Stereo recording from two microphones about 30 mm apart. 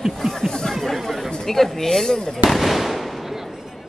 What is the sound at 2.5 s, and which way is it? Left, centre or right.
Fireworks, centre.